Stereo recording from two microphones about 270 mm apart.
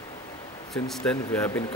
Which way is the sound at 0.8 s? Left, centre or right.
Centre.